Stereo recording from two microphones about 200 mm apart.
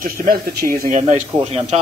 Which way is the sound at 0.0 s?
45° right (ahead or behind).